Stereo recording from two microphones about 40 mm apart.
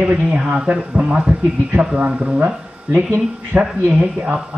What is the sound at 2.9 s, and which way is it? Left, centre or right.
Speech, right.